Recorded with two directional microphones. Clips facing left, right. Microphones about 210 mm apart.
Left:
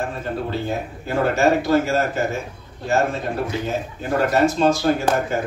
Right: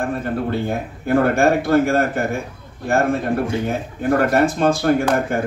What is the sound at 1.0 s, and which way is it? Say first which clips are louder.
A man's voice: right 3 dB; 55° right (ahead or behind).